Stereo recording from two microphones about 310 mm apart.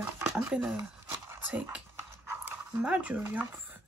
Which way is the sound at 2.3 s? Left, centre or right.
Centre.